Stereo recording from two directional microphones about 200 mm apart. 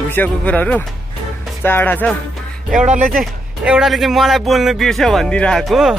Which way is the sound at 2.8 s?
35° right (ahead or behind).